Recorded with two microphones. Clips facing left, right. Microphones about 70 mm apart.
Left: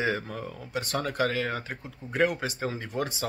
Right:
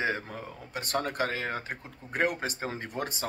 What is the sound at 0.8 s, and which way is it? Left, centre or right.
Speech, right.